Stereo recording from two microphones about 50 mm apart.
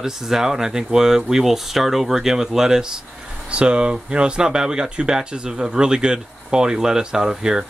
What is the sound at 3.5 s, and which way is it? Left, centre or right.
Speech, right.